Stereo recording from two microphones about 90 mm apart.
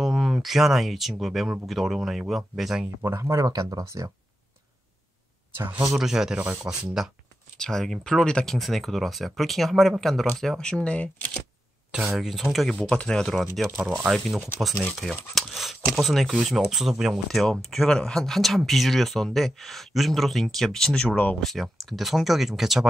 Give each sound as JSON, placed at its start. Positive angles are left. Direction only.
{"t": 0.0, "sound": "speech", "side_deg": 0}
{"t": 3.0, "sound": "speech", "side_deg": -35}
{"t": 5.9, "sound": "speech", "side_deg": -5}
{"t": 7.5, "sound": "speech", "side_deg": 5}
{"t": 12.2, "sound": "speech", "side_deg": 0}